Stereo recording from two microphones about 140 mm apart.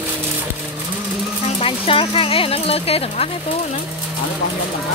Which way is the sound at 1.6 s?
40° left (ahead or behind).